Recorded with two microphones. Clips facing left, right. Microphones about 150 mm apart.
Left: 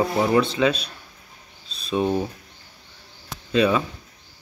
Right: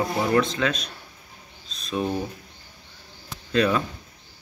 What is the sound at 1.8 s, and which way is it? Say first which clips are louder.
Speech: left 4 dB; 30° left (ahead or behind).